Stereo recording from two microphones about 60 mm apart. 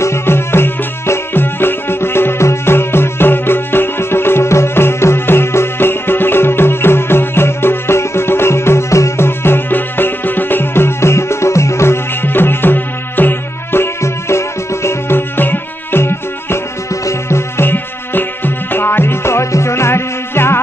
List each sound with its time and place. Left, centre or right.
0.0 s music: left
16.9 s music: left
17.6 s music: left